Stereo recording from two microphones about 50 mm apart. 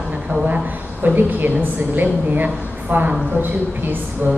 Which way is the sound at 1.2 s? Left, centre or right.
Right.